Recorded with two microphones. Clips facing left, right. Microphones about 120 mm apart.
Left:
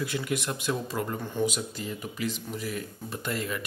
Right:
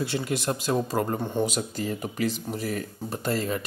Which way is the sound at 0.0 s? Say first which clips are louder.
Right 3 dB; 30° right (ahead or behind).